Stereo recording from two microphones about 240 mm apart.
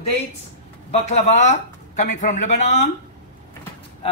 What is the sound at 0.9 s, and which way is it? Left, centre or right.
Speech, left.